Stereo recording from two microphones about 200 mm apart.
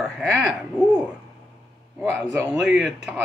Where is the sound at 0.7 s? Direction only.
5° right (ahead or behind).